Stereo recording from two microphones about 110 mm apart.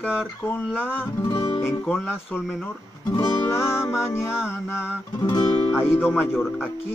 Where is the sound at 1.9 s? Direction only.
5° right (ahead or behind).